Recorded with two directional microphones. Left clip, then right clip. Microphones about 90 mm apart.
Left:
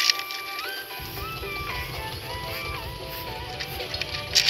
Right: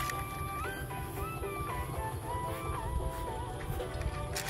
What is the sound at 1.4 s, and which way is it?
Music, 15° left (ahead or behind).